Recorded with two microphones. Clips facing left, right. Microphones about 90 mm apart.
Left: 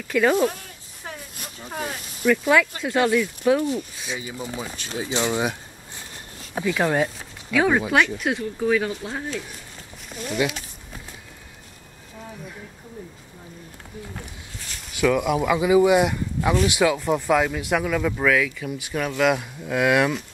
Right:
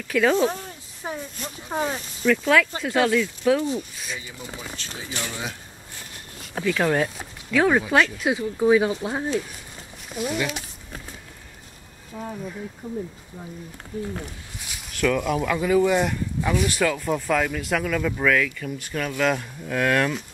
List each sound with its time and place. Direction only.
0.1 s speech: 5° left (ahead or behind)
1.0 s a sound: 20° right (ahead or behind)
1.7 s speech: 25° right (ahead or behind)
2.2 s speech: 10° left (ahead or behind)
4.7 s speech: 20° left (ahead or behind); by 8.5 s centre (ahead or behind)
8.5 s speech: 20° right (ahead or behind)
10.1 s speech: 5° right (ahead or behind)
14.9 s speech: 10° left (ahead or behind)